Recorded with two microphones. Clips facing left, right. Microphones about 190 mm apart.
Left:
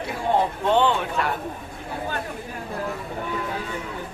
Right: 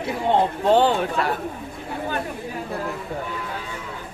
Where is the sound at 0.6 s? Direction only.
35° right (ahead or behind).